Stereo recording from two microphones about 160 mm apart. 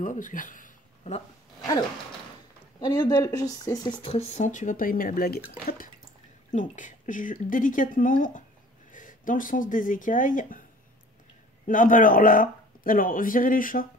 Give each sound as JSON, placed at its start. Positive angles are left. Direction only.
{"t": 0.0, "sound": "a sound", "side_deg": 55}
{"t": 2.8, "sound": "speech", "side_deg": 25}
{"t": 4.0, "sound": "speech", "side_deg": 40}
{"t": 6.5, "sound": "a man's voice", "side_deg": 55}
{"t": 11.6, "sound": "a man's voice", "side_deg": 55}